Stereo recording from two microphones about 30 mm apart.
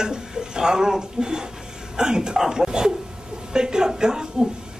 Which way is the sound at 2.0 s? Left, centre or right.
Right.